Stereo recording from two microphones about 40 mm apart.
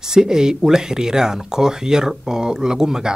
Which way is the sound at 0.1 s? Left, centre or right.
Centre.